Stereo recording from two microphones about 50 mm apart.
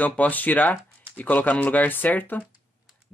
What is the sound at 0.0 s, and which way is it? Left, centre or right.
Speech, left.